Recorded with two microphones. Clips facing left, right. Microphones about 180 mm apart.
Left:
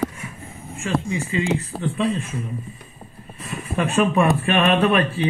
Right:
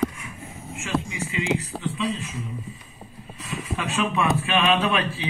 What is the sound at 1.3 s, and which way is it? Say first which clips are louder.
A man's voice: left 2 dB; 45° left (ahead or behind).